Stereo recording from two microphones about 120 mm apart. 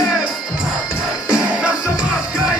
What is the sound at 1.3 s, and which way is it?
Music, 10° right (ahead or behind).